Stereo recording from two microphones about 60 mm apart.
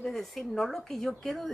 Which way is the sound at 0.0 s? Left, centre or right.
Centre.